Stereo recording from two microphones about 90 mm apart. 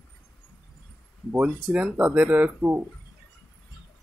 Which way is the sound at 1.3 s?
25° right (ahead or behind).